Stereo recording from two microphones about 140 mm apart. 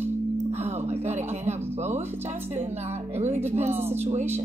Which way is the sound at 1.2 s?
50° right (ahead or behind).